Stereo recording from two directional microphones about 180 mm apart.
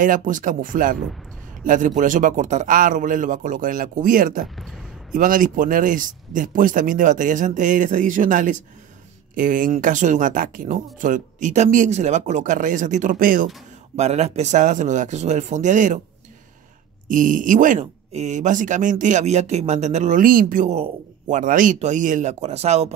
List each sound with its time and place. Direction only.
0.0 s speech: 45° right (ahead or behind)
13.9 s speech: 35° right (ahead or behind)
17.1 s speech: 45° right (ahead or behind)